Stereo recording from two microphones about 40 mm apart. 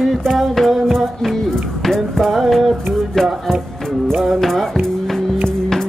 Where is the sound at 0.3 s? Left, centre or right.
Centre.